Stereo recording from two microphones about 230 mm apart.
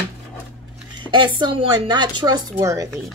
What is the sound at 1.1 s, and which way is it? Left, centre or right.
Speech, centre.